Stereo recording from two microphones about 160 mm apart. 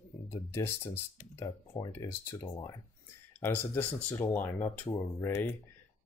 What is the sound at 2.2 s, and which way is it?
Speech, 15° left (ahead or behind).